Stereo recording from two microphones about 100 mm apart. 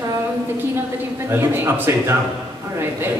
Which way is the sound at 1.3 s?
25° right (ahead or behind).